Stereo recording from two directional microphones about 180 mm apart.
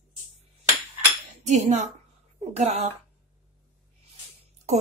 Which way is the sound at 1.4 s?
40° right (ahead or behind).